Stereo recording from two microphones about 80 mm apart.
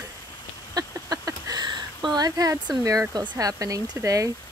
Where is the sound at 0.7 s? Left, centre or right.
Right.